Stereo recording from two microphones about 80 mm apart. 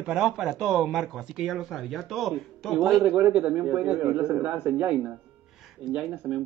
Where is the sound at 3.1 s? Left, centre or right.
Centre.